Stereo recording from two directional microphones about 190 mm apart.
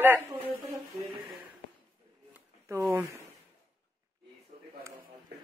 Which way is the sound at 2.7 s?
15° right (ahead or behind).